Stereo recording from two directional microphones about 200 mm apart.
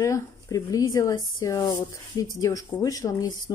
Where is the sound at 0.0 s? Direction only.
15° left (ahead or behind).